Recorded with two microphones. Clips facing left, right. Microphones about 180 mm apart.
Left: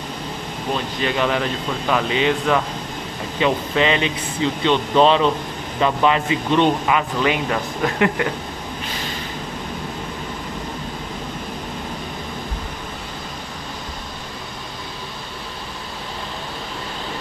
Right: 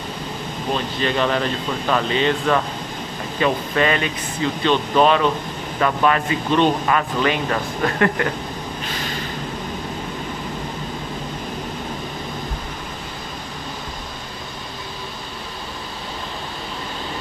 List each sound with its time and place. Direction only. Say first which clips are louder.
1.0 s speech: even; 10° left (ahead or behind)